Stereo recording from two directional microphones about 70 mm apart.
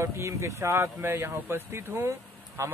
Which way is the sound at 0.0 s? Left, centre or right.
Right.